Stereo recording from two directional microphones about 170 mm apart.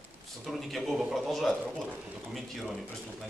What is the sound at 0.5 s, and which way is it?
A man's voice, centre (ahead or behind).